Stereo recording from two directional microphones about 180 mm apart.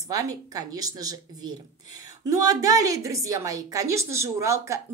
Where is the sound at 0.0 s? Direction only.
20° right (ahead or behind).